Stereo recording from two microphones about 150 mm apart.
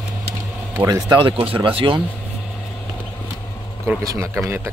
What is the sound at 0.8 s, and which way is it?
Speech, 25° right (ahead or behind).